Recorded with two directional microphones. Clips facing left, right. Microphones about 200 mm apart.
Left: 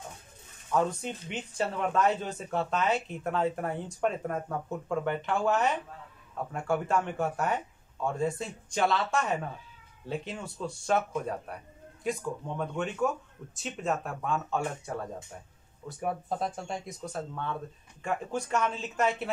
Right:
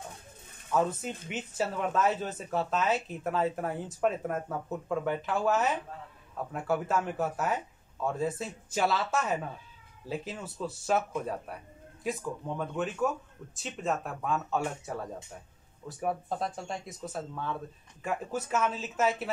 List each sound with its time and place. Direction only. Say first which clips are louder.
0.7 s speech: even; 5° right (ahead or behind)